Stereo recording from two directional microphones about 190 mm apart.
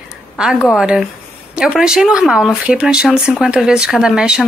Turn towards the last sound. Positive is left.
turn(degrees=-5)  # may be behind; listen again after turning